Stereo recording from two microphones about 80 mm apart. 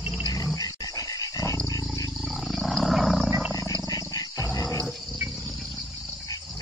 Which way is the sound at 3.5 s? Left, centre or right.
Left.